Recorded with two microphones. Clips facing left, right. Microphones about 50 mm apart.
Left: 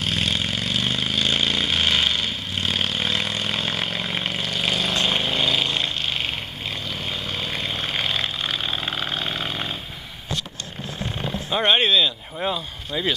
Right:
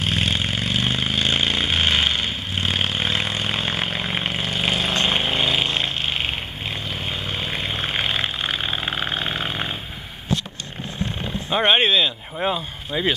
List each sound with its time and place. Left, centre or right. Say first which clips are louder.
0.0 s vehicle: right 1 dB; centre
11.5 s speech: right 1 dB; centre